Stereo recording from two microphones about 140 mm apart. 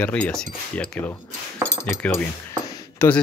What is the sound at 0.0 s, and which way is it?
Speech, 10° left (ahead or behind).